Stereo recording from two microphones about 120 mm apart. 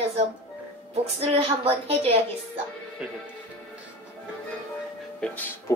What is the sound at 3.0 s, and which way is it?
Speech, 10° right (ahead or behind).